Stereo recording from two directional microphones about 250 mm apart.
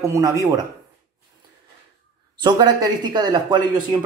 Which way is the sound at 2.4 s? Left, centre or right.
Centre.